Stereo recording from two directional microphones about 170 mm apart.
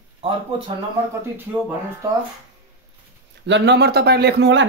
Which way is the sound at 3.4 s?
90° right.